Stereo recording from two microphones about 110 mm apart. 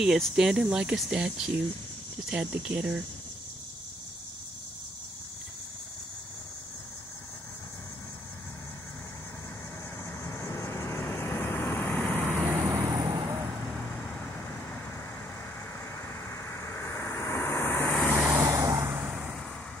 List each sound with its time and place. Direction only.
0.0 s speech: 5° right (ahead or behind)
10.2 s vehicle: 25° left (ahead or behind)
12.4 s vehicle: 25° right (ahead or behind)
13.0 s vehicle: 45° right (ahead or behind)
16.3 s vehicle: 25° left (ahead or behind)
18.1 s vehicle: 10° right (ahead or behind)
18.4 s vehicle: 25° right (ahead or behind)
19.0 s vehicle: 10° right (ahead or behind)